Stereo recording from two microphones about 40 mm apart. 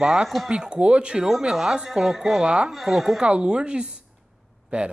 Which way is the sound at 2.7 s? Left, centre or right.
Centre.